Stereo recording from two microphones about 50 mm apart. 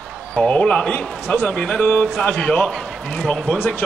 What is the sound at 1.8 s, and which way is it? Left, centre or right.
Speech, left.